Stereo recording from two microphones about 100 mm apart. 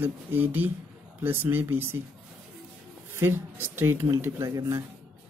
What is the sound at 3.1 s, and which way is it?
Speech, 25° right (ahead or behind).